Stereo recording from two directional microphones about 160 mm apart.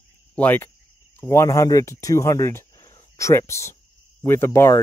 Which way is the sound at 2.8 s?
20° left (ahead or behind).